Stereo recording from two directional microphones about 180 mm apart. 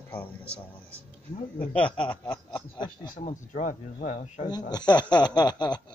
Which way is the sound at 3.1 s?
45° left (ahead or behind).